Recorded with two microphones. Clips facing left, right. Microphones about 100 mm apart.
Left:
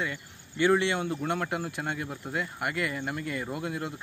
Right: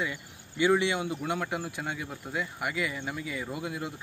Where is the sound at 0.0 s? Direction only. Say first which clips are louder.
Even; 10° right (ahead or behind).